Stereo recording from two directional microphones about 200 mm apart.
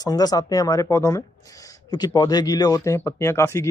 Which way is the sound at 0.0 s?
20° left (ahead or behind).